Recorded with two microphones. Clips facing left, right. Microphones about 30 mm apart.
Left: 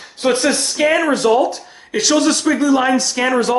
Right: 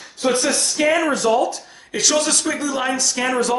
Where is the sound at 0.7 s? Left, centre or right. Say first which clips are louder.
Left 2 dB; centre.